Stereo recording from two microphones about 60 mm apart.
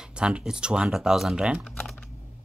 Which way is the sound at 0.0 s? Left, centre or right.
Centre.